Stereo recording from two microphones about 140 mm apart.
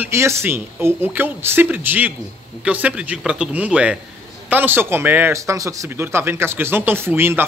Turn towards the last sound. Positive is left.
turn(degrees=-15)  # may be behind; listen again after turning